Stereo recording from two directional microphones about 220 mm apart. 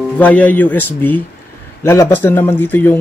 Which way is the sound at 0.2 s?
5° left (ahead or behind).